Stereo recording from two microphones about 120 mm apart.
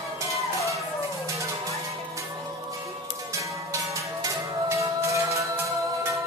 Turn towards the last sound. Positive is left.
turn(degrees=-25)  # may be behind; listen again after turning